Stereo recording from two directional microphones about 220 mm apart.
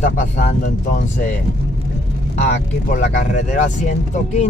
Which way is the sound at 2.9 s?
35° left (ahead or behind).